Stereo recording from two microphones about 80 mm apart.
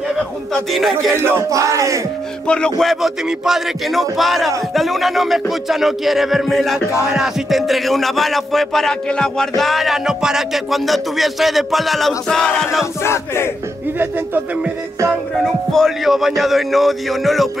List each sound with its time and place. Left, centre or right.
0.5 s music: centre
1.5 s a sound: right
2.4 s speech: centre
2.8 s music: centre
9.6 s music: centre
13.0 s battle cry: left
13.9 s speech: right
15.4 s music: centre